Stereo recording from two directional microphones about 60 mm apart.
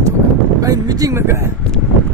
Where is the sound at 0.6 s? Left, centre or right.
Right.